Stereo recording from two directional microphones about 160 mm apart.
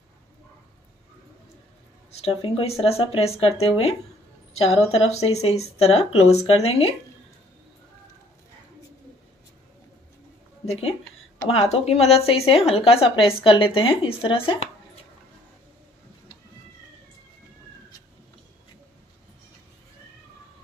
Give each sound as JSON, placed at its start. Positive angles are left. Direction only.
{"t": 2.2, "sound": "speech", "side_deg": 35}
{"t": 10.6, "sound": "speech", "side_deg": 40}